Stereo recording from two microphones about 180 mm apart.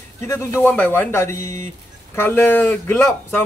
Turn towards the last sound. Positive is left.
turn(degrees=10)  # may be behind; listen again after turning